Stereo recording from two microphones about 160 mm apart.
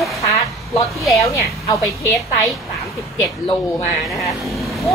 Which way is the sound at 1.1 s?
20° left (ahead or behind).